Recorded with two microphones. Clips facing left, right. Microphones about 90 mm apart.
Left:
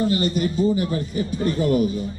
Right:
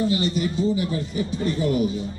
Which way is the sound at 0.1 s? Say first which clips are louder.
Left 2 dB; 45° left (ahead or behind).